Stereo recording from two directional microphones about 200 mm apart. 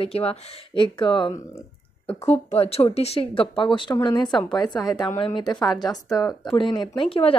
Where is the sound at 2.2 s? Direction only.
30° left (ahead or behind).